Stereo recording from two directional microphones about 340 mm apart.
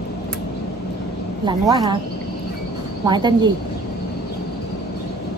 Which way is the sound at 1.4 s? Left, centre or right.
Centre.